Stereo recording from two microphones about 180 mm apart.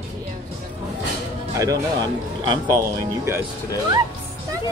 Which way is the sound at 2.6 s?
10° left (ahead or behind).